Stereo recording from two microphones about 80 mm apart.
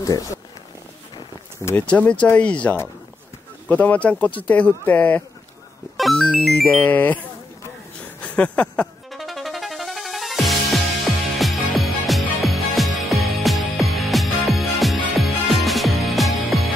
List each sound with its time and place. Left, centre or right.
0.0 s speech: left
1.6 s speech: left
1.9 s speech: centre
8.2 s a sound: centre
9.1 s music: centre